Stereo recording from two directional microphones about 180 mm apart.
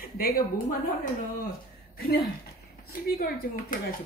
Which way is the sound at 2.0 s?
55° left (ahead or behind).